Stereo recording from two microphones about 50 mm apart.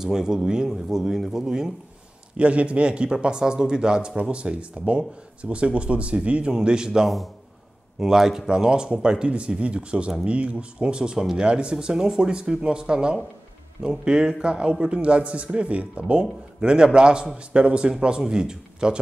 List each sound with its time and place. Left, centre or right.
0.0 s speech: centre
2.3 s speech: right